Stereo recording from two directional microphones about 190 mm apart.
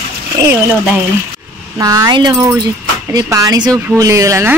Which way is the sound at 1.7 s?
15° right (ahead or behind).